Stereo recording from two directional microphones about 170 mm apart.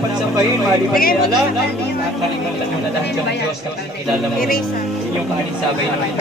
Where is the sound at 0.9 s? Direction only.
60° left (ahead or behind).